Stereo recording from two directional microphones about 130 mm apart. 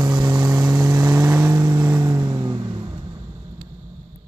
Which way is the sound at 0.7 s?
20° right (ahead or behind).